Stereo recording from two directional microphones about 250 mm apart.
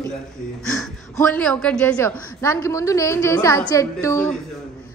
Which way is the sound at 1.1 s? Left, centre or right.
Centre.